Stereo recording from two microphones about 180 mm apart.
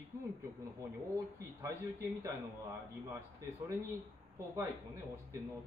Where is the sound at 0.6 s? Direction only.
20° right (ahead or behind).